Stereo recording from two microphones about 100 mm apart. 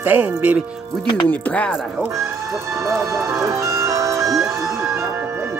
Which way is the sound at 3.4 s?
30° right (ahead or behind).